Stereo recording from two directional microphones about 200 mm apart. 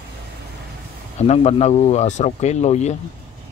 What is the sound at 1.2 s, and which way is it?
Speech, 30° left (ahead or behind).